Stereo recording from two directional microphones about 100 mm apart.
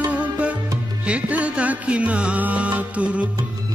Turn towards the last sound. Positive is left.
turn(degrees=-15)  # may be behind; listen again after turning